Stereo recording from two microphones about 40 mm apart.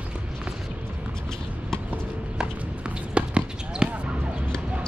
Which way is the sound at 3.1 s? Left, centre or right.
Right.